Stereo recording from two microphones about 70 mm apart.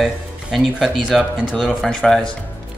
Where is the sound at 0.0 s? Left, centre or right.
Centre.